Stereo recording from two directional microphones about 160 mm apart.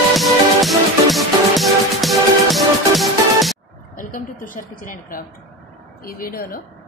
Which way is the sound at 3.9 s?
55° left (ahead or behind).